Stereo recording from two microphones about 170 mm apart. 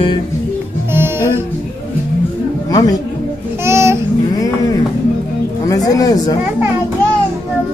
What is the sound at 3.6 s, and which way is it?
Babbling, 15° right (ahead or behind).